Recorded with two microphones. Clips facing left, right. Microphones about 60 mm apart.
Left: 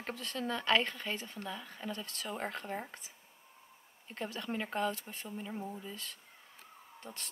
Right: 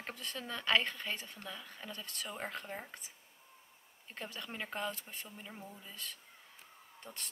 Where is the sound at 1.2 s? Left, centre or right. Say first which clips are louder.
Left 5 dB; left.